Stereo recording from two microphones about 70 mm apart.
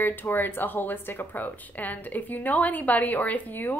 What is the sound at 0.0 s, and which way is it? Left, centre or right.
Speech, left.